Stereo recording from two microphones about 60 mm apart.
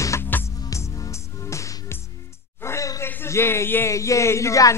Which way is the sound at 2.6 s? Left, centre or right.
Left.